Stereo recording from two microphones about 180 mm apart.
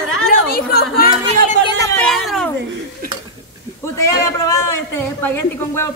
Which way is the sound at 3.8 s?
20° left (ahead or behind).